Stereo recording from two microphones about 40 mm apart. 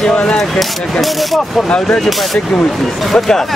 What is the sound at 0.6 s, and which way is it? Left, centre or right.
A man's voice, centre.